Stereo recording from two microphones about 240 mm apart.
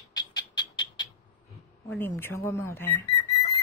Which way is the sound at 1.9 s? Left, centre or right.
Centre.